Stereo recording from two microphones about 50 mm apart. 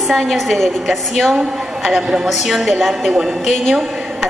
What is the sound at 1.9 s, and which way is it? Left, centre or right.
Music, centre.